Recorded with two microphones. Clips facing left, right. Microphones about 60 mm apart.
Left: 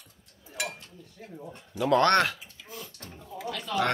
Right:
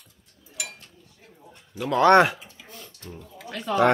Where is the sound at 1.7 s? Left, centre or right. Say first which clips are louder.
Right 2 dB; centre.